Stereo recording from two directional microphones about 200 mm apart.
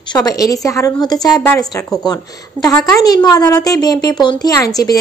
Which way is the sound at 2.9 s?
20° left (ahead or behind).